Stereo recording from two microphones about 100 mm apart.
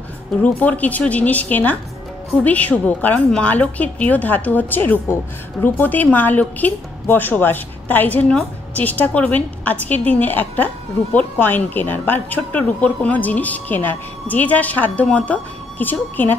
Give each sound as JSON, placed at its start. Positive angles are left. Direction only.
{"t": 0.4, "sound": "a woman's voice", "side_deg": 15}